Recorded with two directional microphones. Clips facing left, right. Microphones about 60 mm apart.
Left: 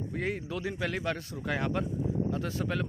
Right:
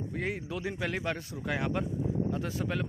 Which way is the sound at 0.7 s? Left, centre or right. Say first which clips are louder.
Left 1 dB; centre.